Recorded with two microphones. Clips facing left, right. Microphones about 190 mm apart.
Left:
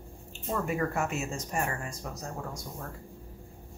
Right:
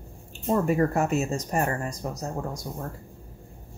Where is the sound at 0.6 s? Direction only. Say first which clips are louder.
Right 5 dB; 40° right (ahead or behind).